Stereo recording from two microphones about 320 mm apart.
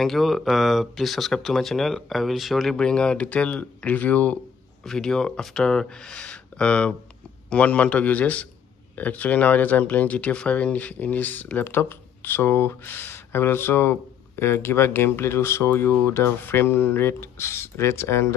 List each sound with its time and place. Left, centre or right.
0.0 s speech: centre